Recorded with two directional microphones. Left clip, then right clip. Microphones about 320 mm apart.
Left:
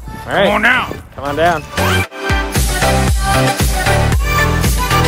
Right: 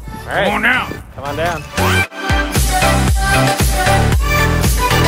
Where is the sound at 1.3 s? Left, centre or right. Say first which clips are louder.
Left 6 dB; left.